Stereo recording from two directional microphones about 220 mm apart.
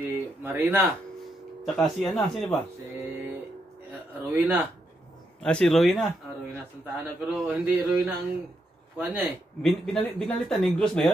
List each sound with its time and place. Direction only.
0.0 s speech: 10° right (ahead or behind)
3.0 s music: 10° right (ahead or behind)
4.2 s speech: 10° right (ahead or behind)
5.4 s speech: 5° left (ahead or behind)
9.6 s speech: 5° left (ahead or behind)